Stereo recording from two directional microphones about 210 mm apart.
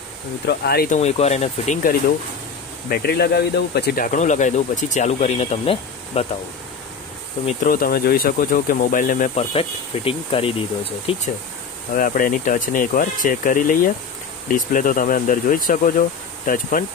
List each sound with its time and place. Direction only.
0.5 s speech: 50° left (ahead or behind)
0.9 s speech: 30° left (ahead or behind)
7.4 s speech: 40° left (ahead or behind)
11.9 s speech: 40° left (ahead or behind)